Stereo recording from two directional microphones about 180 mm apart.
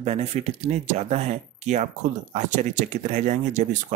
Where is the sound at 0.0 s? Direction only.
35° right (ahead or behind).